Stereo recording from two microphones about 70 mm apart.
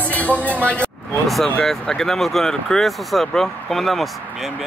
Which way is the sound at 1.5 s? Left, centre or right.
Centre.